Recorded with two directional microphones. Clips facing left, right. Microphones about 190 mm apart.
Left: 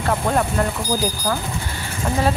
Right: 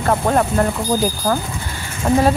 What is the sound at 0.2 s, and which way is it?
Speech, 45° right (ahead or behind).